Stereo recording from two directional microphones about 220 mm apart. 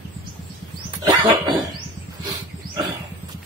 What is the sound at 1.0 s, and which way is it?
Cough, 20° right (ahead or behind).